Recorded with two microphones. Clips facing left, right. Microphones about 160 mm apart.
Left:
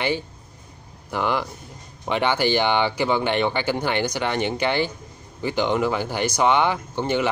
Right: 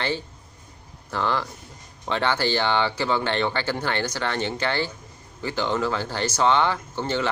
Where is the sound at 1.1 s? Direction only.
15° left (ahead or behind).